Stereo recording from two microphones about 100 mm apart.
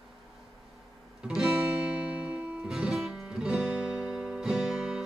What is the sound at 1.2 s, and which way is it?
Music, 5° right (ahead or behind).